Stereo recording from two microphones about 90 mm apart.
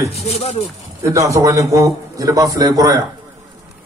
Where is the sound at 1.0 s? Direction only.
35° right (ahead or behind).